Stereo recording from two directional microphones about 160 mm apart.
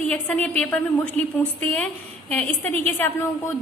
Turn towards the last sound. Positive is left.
turn(degrees=15)  # may be behind; listen again after turning